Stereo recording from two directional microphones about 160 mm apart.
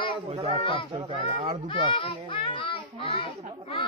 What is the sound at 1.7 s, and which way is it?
A child's voice, 30° left (ahead or behind).